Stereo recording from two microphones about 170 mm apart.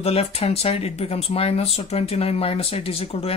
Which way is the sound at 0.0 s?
35° left (ahead or behind).